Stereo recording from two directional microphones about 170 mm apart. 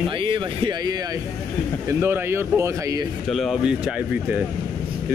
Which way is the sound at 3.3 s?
Centre (ahead or behind).